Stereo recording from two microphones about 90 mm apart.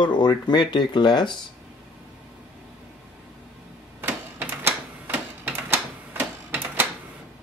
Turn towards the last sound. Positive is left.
turn(degrees=-20)  # may be behind; listen again after turning